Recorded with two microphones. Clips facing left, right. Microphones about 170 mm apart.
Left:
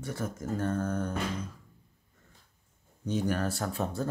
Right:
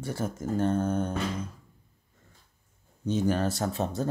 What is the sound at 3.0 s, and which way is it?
Speech, 25° right (ahead or behind).